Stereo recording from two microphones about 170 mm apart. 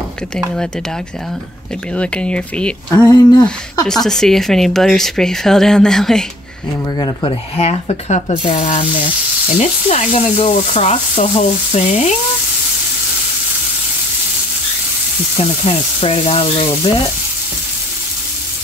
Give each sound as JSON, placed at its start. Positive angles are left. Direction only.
{"t": 2.0, "sound": "speech", "side_deg": 5}
{"t": 7.0, "sound": "sizzle", "side_deg": 30}
{"t": 15.3, "sound": "sizzle", "side_deg": 35}